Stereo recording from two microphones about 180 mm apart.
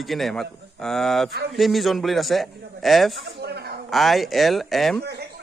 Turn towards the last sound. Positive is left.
turn(degrees=-65)  # may be behind; listen again after turning